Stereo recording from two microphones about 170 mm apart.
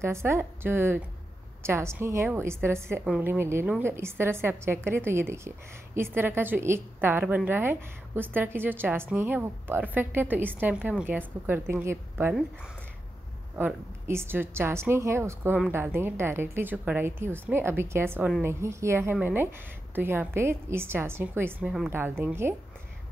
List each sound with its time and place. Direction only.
0.0 s a woman's voice: 15° right (ahead or behind)
13.6 s a woman's voice: 10° right (ahead or behind)